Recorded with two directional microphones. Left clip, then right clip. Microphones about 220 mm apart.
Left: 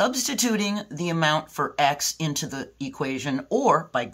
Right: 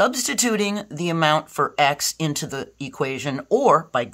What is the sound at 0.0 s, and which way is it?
Speech, 40° right (ahead or behind).